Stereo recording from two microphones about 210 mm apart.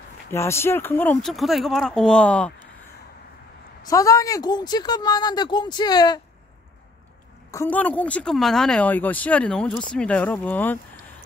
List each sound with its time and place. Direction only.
0.3 s speech: 10° left (ahead or behind)
3.8 s speech: 15° left (ahead or behind)
7.5 s speech: 10° left (ahead or behind)